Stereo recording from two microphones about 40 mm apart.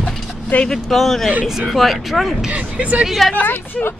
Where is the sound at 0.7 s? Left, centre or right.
Centre.